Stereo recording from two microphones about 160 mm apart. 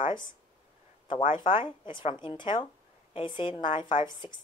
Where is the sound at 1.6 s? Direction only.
30° left (ahead or behind).